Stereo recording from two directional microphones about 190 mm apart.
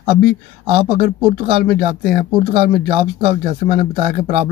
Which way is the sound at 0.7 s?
30° right (ahead or behind).